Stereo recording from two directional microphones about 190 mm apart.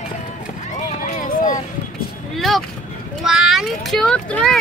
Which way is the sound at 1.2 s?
45° left (ahead or behind).